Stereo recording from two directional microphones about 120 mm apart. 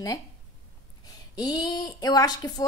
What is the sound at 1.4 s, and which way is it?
Speech, 30° left (ahead or behind).